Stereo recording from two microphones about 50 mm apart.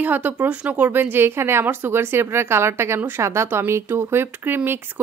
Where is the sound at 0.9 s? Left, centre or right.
Right.